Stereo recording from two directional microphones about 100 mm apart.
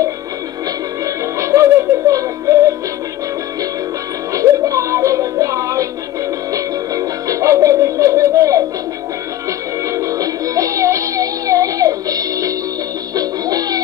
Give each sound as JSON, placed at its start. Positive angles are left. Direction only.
{"t": 1.0, "sound": "music", "side_deg": -30}
{"t": 4.3, "sound": "music", "side_deg": -35}
{"t": 9.8, "sound": "music", "side_deg": -35}